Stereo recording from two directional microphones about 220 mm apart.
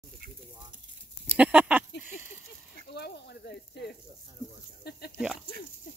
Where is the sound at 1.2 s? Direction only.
5° right (ahead or behind).